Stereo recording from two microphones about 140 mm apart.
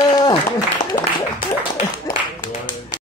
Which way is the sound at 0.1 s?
35° left (ahead or behind).